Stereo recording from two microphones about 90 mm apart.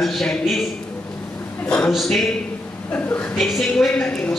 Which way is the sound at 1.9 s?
Centre (ahead or behind).